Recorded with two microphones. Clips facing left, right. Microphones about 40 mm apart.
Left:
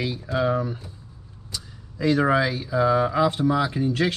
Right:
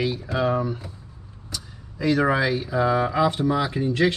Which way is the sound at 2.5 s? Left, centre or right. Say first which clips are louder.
Right 2 dB; right.